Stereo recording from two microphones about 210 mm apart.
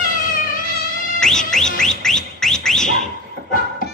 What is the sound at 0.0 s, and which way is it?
Cat, 40° left (ahead or behind).